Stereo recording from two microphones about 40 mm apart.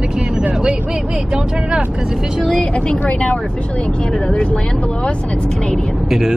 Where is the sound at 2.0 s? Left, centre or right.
Centre.